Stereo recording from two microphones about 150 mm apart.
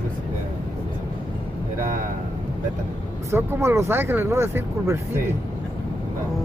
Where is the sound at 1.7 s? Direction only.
65° right (ahead or behind).